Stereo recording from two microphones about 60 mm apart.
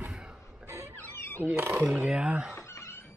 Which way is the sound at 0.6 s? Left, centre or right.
Right.